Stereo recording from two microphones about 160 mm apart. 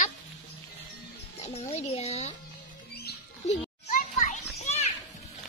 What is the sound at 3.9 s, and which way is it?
Children playing, 50° left (ahead or behind).